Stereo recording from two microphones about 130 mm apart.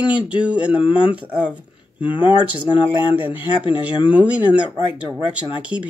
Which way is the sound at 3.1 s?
10° right (ahead or behind).